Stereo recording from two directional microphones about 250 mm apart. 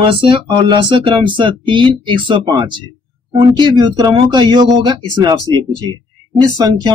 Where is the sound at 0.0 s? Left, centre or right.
Centre.